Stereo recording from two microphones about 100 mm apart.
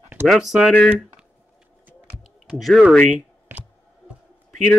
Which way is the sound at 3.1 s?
15° right (ahead or behind).